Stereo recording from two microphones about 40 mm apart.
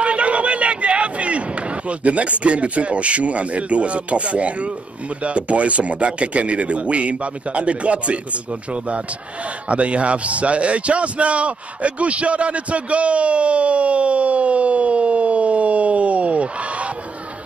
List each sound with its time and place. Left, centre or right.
0.0 s a man's voice: right